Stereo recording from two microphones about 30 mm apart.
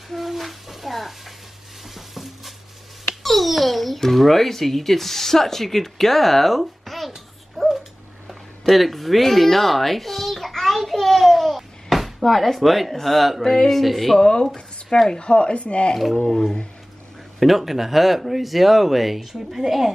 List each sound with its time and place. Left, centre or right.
0.1 s speech: centre
2.0 s stir: centre
3.3 s babbling: centre
4.0 s speech: centre
7.5 s dog: centre
8.3 s a sound: centre
12.2 s speech: centre
14.4 s a sound: centre
15.3 s speech: left
17.4 s speech: centre